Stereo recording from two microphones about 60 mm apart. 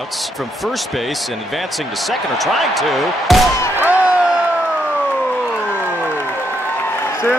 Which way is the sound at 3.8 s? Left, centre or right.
Right.